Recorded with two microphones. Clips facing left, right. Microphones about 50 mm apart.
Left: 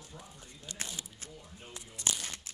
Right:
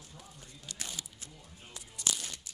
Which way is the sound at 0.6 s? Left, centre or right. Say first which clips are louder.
Left 1 dB; left.